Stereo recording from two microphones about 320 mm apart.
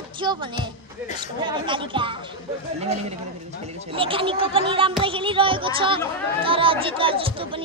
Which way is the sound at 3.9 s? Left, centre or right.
Centre.